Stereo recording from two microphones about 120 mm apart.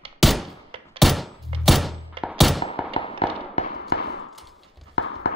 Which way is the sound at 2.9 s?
50° left (ahead or behind).